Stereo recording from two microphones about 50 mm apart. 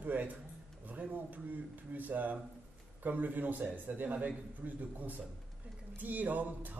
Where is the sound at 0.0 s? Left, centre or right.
Right.